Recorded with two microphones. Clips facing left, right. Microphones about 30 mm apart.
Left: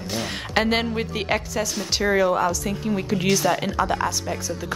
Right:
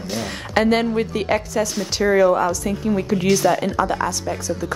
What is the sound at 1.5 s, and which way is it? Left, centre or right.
A woman's voice, centre.